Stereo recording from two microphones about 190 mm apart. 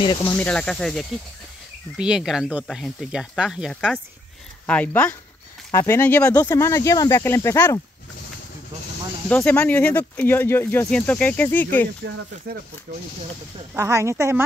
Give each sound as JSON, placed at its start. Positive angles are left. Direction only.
{"t": 0.2, "sound": "speech", "side_deg": 10}
{"t": 4.6, "sound": "speech", "side_deg": 10}
{"t": 9.3, "sound": "speech", "side_deg": 10}
{"t": 13.7, "sound": "speech", "side_deg": -15}